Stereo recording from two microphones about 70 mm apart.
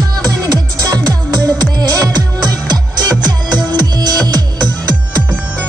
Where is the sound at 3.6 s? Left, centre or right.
Right.